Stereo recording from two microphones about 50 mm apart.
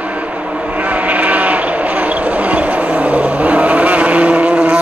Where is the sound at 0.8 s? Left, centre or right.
Right.